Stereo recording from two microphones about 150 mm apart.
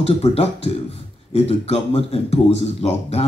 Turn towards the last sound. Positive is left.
turn(degrees=40)  # may be behind; listen again after turning